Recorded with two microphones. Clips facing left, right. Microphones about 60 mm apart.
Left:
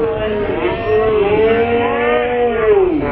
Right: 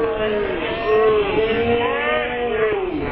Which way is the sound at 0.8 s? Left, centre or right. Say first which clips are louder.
Left 1 dB; centre.